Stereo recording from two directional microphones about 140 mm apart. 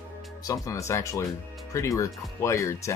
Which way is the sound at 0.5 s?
20° left (ahead or behind).